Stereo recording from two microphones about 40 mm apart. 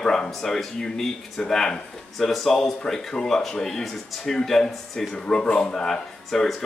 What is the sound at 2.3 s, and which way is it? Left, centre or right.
Speech, centre.